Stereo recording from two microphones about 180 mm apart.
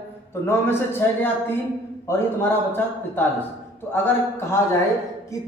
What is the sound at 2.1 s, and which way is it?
A man's voice, 10° left (ahead or behind).